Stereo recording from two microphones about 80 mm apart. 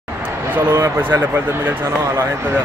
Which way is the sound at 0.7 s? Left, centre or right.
Right.